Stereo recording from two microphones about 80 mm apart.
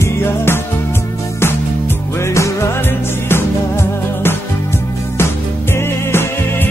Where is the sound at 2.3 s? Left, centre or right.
Left.